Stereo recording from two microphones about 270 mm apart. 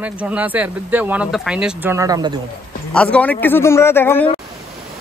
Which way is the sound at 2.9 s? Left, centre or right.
Centre.